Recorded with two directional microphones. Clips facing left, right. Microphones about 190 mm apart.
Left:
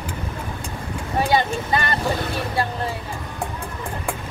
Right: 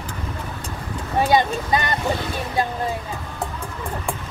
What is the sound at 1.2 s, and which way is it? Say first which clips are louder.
Speech: right 2 dB; 20° right (ahead or behind).